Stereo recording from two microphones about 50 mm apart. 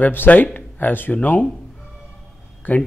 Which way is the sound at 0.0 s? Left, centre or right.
Left.